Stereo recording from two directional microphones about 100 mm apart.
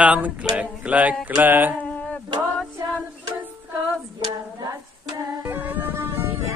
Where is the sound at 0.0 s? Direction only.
15° right (ahead or behind).